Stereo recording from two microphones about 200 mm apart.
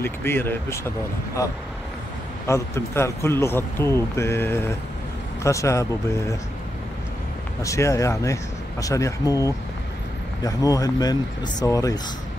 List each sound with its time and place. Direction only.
0.0 s speech: 10° left (ahead or behind)
7.6 s speech: 15° left (ahead or behind)